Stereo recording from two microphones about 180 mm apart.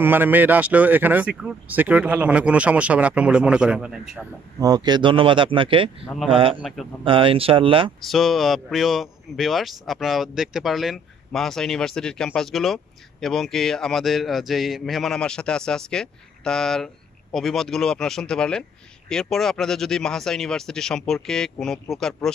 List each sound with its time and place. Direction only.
0.0 s speech: 10° right (ahead or behind)
4.6 s speech: 20° right (ahead or behind)
8.1 s speech: centre (ahead or behind)